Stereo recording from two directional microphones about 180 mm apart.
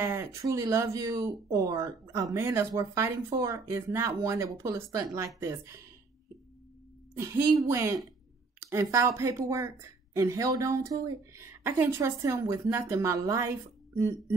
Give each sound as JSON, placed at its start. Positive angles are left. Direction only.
{"t": 0.0, "sound": "a woman's voice", "side_deg": -15}
{"t": 7.2, "sound": "a woman's voice", "side_deg": -15}